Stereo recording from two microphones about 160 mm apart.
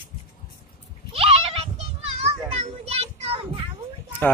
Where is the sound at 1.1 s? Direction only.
35° right (ahead or behind).